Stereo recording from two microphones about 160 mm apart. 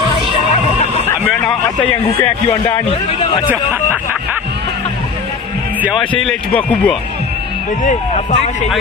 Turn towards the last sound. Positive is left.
turn(degrees=10)  # may be behind; listen again after turning